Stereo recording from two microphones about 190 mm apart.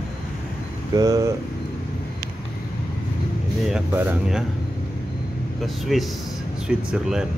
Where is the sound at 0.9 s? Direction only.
20° right (ahead or behind).